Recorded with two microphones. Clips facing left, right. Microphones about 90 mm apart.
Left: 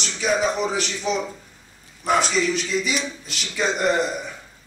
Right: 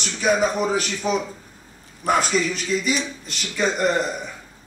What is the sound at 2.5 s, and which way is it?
A man's voice, centre (ahead or behind).